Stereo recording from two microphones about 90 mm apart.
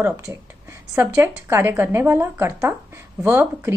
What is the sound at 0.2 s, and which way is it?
A woman's voice, 35° right (ahead or behind).